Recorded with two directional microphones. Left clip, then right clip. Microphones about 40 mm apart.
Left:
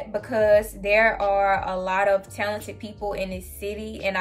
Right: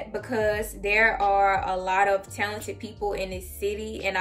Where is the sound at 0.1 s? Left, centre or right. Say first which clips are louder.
Left 8 dB; left.